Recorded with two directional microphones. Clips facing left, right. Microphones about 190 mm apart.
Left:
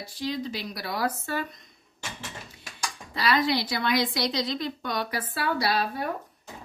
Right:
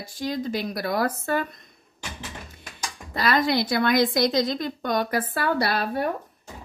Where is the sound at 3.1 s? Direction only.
50° right (ahead or behind).